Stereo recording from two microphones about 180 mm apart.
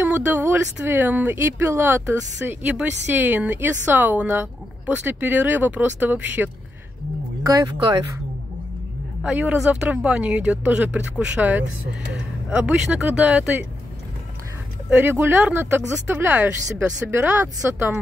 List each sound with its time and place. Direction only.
0.0 s speech: 10° right (ahead or behind)
7.5 s speech: 25° right (ahead or behind)
9.2 s speech: 10° right (ahead or behind)
14.9 s speech: 10° right (ahead or behind)